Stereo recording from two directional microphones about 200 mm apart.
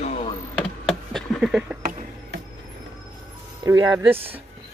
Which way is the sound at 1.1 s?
Centre (ahead or behind).